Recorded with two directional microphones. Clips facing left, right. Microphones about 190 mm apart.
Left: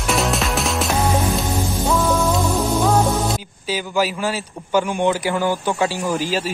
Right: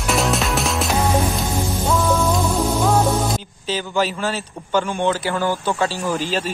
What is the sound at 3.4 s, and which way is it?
A man's voice, 10° left (ahead or behind).